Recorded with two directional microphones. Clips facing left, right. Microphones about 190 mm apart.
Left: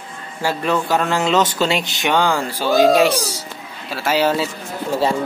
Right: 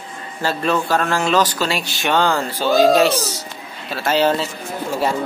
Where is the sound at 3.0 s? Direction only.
10° left (ahead or behind).